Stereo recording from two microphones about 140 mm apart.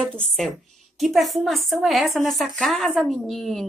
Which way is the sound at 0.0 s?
5° left (ahead or behind).